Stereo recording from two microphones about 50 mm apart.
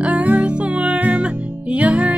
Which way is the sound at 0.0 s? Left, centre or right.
Right.